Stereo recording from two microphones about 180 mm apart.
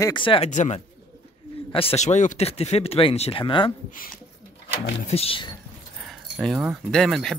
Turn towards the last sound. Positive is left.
turn(degrees=5)  # may be behind; listen again after turning